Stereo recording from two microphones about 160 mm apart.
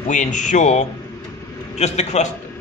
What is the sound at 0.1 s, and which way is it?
A man's voice, 50° left (ahead or behind).